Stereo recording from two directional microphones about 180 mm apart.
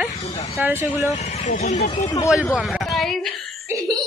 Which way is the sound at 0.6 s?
10° right (ahead or behind).